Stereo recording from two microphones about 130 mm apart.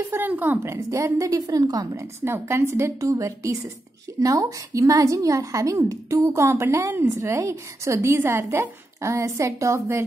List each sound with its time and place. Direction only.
0.1 s a woman's voice: 15° right (ahead or behind)